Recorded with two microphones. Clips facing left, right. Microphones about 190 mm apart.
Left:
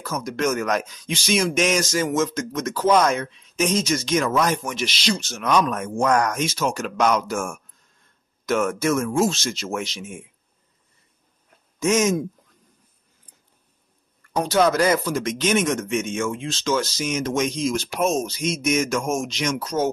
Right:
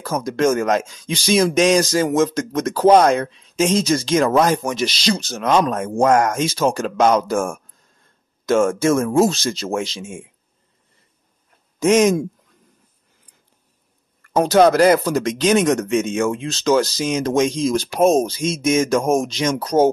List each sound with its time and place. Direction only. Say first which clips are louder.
0.0 s speech: right 6 dB; 30° right (ahead or behind)
11.8 s speech: right 5 dB; 35° right (ahead or behind)
15.0 s speech: right 5 dB; 40° right (ahead or behind)
16.0 s speech: right 6 dB; 65° right (ahead or behind)
16.4 s speech: right 6 dB; 40° right (ahead or behind)